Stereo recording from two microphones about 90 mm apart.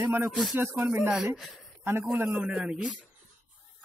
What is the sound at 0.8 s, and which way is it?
Speech, 25° right (ahead or behind).